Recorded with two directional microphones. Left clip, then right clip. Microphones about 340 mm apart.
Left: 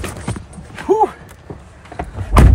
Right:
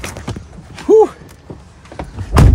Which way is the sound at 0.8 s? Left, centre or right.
Right.